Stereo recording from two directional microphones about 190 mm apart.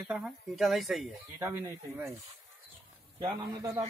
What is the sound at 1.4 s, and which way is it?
Speech, 15° right (ahead or behind).